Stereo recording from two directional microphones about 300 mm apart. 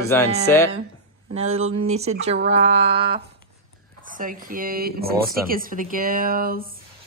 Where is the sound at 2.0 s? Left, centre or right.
Right.